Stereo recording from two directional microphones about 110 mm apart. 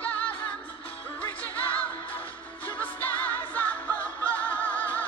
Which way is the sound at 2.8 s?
15° left (ahead or behind).